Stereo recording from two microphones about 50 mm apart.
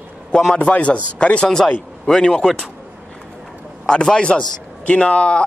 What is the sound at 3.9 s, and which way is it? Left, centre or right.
A man's voice, centre.